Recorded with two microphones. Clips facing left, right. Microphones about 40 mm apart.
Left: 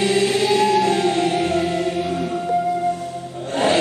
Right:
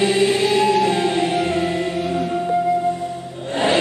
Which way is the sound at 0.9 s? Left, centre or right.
Right.